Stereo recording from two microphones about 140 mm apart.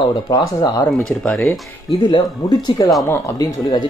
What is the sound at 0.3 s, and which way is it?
Speech, 25° left (ahead or behind).